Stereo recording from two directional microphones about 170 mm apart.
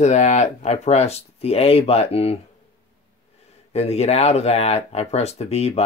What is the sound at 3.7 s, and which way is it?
Speech, 40° left (ahead or behind).